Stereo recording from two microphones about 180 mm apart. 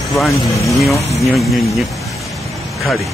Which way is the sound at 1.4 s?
Centre (ahead or behind).